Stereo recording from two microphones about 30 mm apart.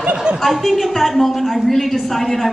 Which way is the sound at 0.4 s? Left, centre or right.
Centre.